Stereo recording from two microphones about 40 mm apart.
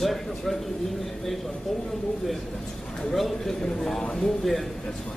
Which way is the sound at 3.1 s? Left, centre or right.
Centre.